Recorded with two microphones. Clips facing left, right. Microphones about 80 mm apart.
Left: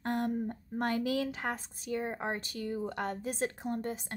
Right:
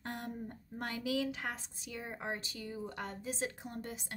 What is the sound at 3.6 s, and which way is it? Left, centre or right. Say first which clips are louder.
Speech: left 8 dB; left.